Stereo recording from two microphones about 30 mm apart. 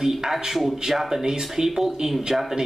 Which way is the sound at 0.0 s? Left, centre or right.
Centre.